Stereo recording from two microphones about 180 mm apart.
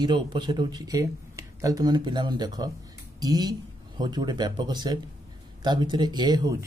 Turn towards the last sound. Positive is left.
turn(degrees=-20)  # may be behind; listen again after turning